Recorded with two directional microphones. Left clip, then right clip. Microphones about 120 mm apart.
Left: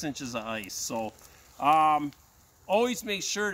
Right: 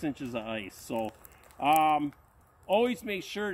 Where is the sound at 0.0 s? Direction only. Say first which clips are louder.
Left 1 dB; 45° left (ahead or behind).